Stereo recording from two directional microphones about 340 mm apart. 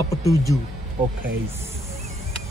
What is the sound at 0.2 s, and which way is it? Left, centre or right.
Speech, centre.